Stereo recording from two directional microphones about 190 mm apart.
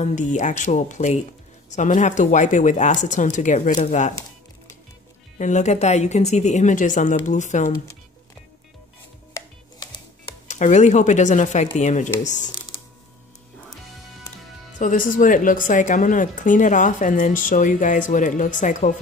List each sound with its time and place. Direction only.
0.0 s speech: 40° left (ahead or behind)
5.4 s speech: 40° left (ahead or behind)
9.3 s music: 20° left (ahead or behind)
10.5 s speech: 40° left (ahead or behind)
14.8 s a woman's voice: 45° left (ahead or behind)